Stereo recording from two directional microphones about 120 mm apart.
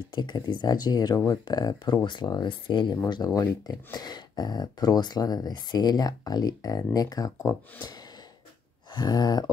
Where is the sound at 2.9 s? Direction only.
30° left (ahead or behind).